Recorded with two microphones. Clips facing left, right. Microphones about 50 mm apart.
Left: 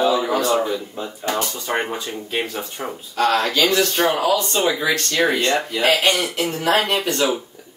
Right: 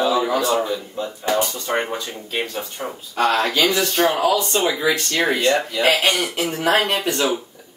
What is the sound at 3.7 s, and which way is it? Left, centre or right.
Speech, centre.